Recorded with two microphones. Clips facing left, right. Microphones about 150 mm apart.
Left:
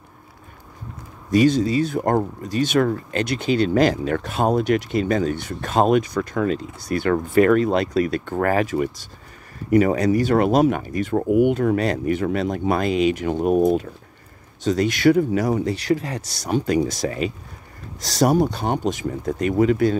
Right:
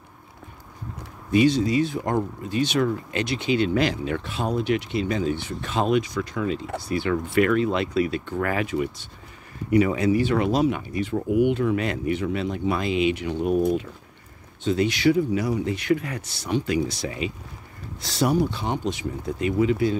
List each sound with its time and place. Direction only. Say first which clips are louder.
1.3 s speech: left 2 dB; 40° left (ahead or behind)
2.0 s speech: left 5 dB; 50° left (ahead or behind)